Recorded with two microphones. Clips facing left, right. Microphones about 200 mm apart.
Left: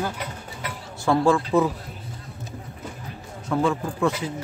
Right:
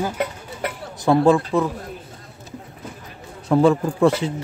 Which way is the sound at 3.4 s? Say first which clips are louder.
Right 7 dB; 35° right (ahead or behind).